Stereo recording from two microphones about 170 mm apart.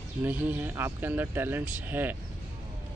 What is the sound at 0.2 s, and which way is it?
Speech, 10° right (ahead or behind).